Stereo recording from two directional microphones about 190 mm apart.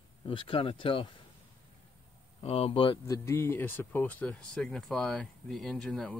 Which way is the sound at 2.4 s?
30° left (ahead or behind).